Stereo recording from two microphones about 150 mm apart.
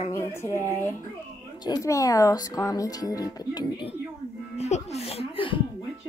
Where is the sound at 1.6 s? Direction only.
25° left (ahead or behind).